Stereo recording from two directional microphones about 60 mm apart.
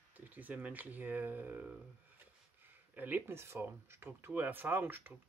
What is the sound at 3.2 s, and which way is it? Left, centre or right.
Speech, right.